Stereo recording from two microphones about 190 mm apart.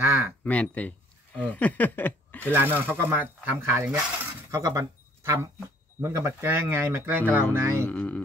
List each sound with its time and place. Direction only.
0.0 s a sound: 10° right (ahead or behind)
0.4 s speech: 5° left (ahead or behind)
2.5 s speech: 10° right (ahead or behind)
7.8 s speech: 5° left (ahead or behind)